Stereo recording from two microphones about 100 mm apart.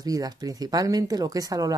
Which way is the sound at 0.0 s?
40° right (ahead or behind).